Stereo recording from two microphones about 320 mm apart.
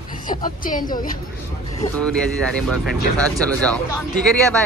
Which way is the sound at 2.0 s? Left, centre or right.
Centre.